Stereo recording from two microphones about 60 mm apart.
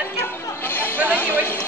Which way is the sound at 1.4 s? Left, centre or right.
Left.